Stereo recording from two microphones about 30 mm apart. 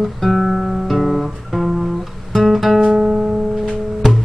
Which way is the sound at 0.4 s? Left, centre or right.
Centre.